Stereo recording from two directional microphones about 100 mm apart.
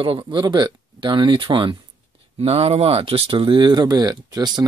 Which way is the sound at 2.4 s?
85° right.